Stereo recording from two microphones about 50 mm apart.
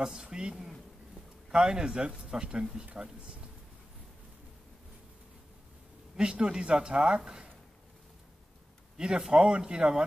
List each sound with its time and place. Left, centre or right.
0.0 s speech: centre
6.1 s speech: centre
8.9 s speech: centre